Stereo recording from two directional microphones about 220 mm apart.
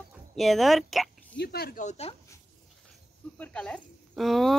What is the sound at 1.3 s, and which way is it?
Speech, 45° left (ahead or behind).